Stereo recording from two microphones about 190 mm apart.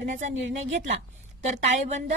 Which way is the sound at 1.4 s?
35° right (ahead or behind).